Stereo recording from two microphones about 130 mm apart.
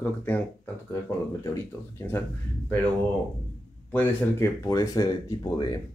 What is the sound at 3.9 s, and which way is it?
Speech, 15° left (ahead or behind).